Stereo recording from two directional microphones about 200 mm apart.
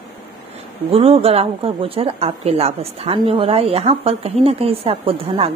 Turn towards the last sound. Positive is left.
turn(degrees=-30)  # may be behind; listen again after turning